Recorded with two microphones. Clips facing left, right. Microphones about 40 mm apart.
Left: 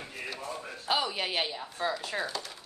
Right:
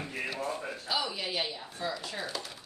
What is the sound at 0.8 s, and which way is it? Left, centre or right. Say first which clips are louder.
Speech: left 4 dB; left.